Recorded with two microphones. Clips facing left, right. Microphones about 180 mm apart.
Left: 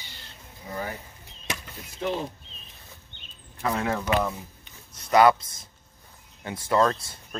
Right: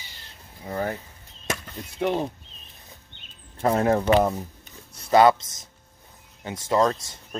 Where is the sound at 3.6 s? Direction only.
40° right (ahead or behind).